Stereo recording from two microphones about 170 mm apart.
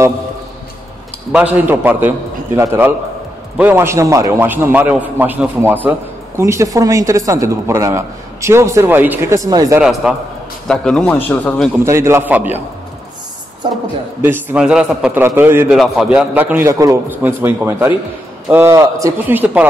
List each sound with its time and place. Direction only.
1.3 s speech: 10° right (ahead or behind)
9.8 s a man's voice: 5° right (ahead or behind)
11.8 s speech: 15° right (ahead or behind)
13.6 s a woman's voice: 25° right (ahead or behind)
14.2 s speech: 10° right (ahead or behind)